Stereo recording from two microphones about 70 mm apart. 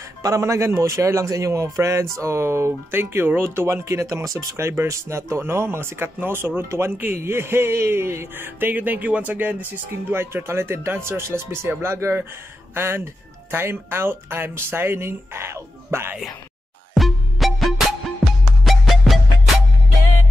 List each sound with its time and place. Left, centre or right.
0.2 s a man's voice: right
16.9 s music: centre